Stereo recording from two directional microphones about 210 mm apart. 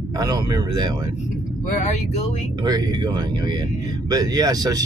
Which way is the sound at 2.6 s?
20° right (ahead or behind).